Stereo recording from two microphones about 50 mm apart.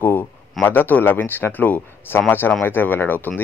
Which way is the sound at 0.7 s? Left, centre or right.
Left.